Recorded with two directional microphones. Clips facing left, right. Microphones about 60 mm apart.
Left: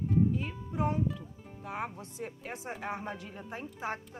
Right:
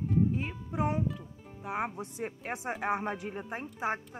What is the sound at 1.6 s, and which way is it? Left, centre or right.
Speech, centre.